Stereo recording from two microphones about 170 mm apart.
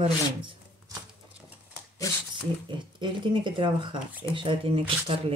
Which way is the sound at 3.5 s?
30° right (ahead or behind).